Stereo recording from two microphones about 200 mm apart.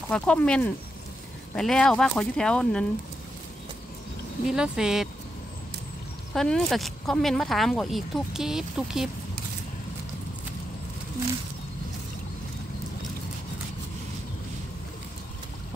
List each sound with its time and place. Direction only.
0.1 s speech: 5° left (ahead or behind)
4.5 s speech: 5° right (ahead or behind)
6.3 s speech: centre (ahead or behind)